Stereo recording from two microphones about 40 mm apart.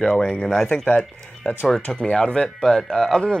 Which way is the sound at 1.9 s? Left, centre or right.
Left.